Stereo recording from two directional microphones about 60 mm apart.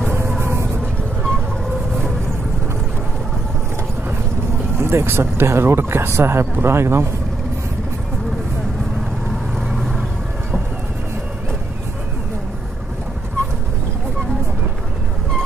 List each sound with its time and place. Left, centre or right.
0.4 s vehicle: right
4.7 s speech: right
9.6 s vehicle: centre